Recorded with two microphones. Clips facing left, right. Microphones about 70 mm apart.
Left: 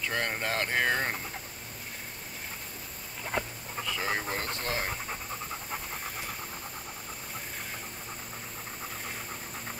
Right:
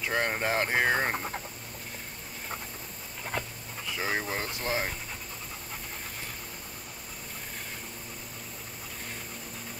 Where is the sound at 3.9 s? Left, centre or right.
Centre.